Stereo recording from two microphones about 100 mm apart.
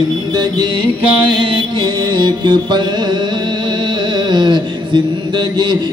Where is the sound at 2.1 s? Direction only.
50° right (ahead or behind).